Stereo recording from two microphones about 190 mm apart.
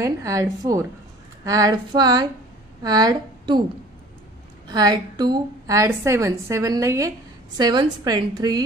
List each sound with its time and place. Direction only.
0.0 s a woman's voice: 15° right (ahead or behind)
4.6 s a woman's voice: 20° right (ahead or behind)